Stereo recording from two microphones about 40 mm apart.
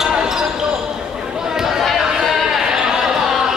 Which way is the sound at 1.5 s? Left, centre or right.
Centre.